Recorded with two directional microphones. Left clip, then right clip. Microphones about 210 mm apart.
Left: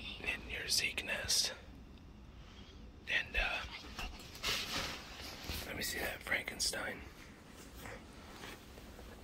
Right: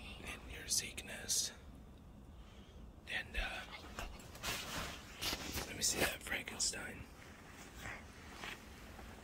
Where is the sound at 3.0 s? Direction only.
10° right (ahead or behind).